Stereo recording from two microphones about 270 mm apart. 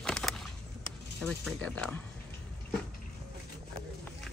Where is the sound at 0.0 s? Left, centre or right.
Centre.